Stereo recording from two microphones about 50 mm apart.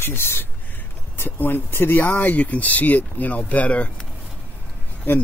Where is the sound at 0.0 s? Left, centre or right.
Left.